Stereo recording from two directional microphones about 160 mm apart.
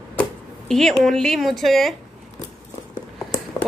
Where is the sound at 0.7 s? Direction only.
5° left (ahead or behind).